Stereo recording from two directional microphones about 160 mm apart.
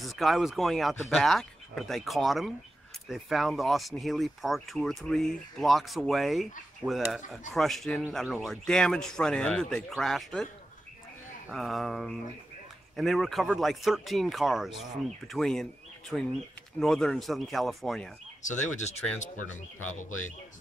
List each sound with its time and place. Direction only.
0.0 s speech: centre (ahead or behind)
18.4 s speech: 50° left (ahead or behind)